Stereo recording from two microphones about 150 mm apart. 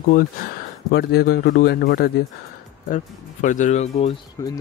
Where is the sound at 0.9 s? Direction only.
90° left.